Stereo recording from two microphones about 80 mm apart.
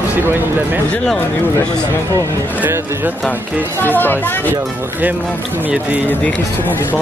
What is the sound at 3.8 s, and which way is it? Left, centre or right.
Speech, left.